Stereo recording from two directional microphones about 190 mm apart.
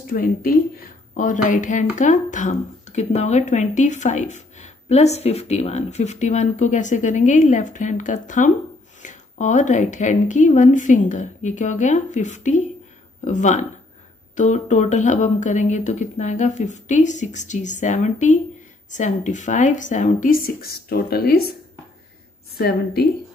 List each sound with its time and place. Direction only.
0.1 s speech: 50° left (ahead or behind)
22.6 s a woman's voice: 55° left (ahead or behind)